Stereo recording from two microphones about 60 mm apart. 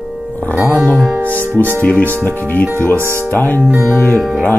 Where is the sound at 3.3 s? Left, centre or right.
Left.